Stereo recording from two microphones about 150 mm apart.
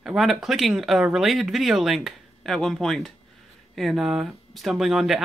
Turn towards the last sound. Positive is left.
turn(degrees=0)  # may be behind; listen again after turning